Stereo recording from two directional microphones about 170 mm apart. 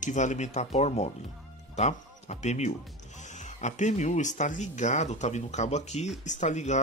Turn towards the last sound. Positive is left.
turn(degrees=45)  # may be behind; listen again after turning